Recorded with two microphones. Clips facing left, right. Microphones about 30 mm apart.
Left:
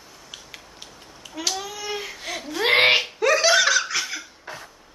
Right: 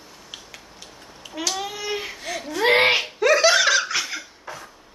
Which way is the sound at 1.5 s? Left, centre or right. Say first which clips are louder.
Right 2 dB; centre.